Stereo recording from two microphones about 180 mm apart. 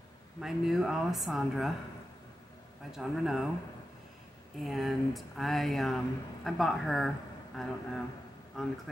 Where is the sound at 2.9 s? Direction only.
5° right (ahead or behind).